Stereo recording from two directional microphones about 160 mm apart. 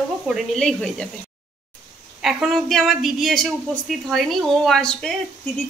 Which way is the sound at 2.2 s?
Centre (ahead or behind).